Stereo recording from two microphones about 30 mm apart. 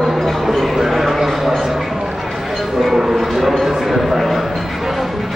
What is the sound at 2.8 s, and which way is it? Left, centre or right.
Speech, centre.